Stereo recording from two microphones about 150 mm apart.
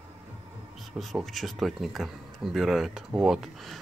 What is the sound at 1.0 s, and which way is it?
Speech, centre (ahead or behind).